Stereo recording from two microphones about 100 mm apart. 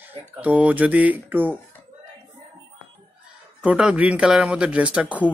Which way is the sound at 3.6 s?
10° right (ahead or behind).